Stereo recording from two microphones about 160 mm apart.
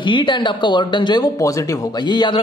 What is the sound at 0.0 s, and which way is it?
Speech, 30° left (ahead or behind).